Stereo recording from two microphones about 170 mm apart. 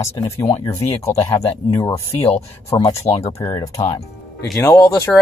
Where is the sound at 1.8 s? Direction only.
35° left (ahead or behind).